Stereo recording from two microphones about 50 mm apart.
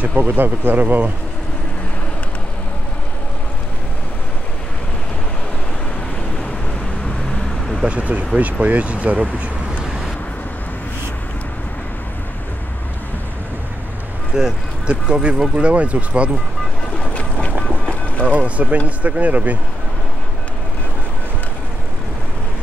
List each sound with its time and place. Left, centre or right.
0.0 s speech: right
7.4 s vehicle: centre
7.8 s speech: right
9.8 s vehicle: centre
14.3 s speech: centre
17.0 s boat: left
18.2 s a sound: right
18.9 s speech: right